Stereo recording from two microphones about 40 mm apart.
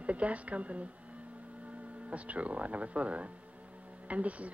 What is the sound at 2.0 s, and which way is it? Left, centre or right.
Speech, right.